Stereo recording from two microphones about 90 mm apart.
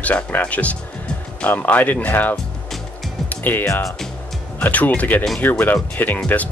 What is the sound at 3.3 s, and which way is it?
Music, 20° left (ahead or behind).